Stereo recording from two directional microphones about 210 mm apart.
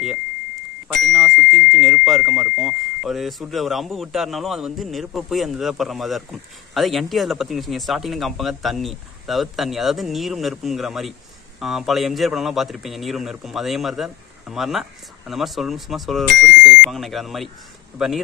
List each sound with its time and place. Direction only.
0.8 s speech: centre (ahead or behind)